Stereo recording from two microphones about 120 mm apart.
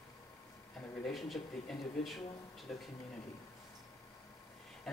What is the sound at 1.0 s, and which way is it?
Speech, 5° left (ahead or behind).